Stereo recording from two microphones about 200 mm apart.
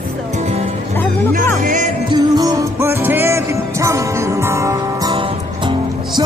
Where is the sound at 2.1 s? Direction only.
20° right (ahead or behind).